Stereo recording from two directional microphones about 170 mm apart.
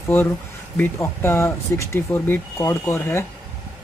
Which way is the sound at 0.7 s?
15° left (ahead or behind).